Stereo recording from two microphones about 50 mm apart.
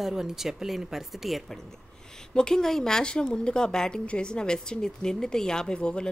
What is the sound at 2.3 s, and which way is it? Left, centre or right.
A woman's voice, centre.